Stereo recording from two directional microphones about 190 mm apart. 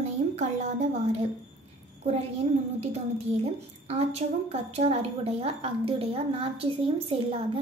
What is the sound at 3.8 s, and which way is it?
A woman's voice, 35° right (ahead or behind).